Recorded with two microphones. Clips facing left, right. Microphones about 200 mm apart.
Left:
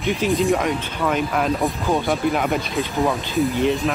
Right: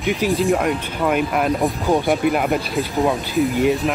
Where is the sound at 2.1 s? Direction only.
Centre (ahead or behind).